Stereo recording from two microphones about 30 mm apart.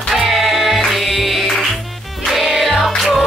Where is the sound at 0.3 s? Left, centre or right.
Centre.